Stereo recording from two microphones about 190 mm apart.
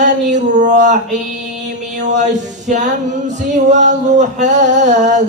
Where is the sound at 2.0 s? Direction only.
40° right (ahead or behind).